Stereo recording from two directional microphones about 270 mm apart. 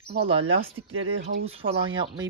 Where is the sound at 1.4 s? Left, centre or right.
Right.